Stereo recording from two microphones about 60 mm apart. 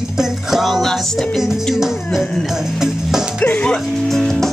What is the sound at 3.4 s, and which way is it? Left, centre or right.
Speech, left.